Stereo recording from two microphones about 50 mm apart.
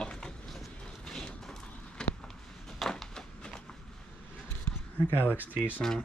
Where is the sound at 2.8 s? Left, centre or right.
Centre.